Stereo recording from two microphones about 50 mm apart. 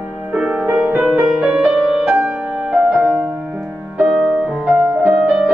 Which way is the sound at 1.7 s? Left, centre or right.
Centre.